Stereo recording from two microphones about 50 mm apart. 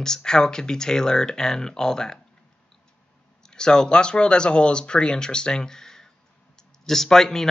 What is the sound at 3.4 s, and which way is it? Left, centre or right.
Speech, centre.